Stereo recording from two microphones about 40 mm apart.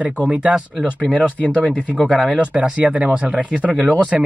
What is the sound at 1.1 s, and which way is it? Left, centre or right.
Speech, left.